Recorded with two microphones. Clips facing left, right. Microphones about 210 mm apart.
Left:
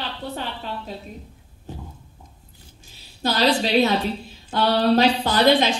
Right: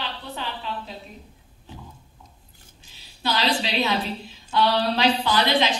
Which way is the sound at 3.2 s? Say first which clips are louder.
Left 4 dB; 40° left (ahead or behind).